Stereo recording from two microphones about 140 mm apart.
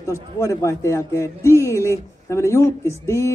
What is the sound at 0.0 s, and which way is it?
A man's voice, 20° left (ahead or behind).